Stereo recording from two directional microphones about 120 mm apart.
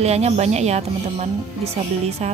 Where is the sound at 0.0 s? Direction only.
65° right (ahead or behind).